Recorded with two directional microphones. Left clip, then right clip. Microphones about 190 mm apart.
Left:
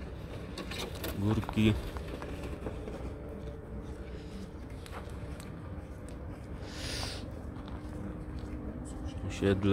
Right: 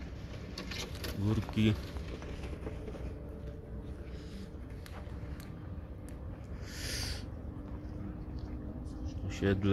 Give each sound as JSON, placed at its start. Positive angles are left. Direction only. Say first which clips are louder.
{"t": 0.6, "sound": "vehicle", "louder": "left 2 dB", "side_deg": 40}
{"t": 1.2, "sound": "speech", "louder": "left 3 dB", "side_deg": 0}
{"t": 2.0, "sound": "run", "louder": "left 4 dB", "side_deg": 55}
{"t": 6.8, "sound": "a sound", "louder": "left 1 dB", "side_deg": -5}
{"t": 9.3, "sound": "speech", "louder": "left 3 dB", "side_deg": 0}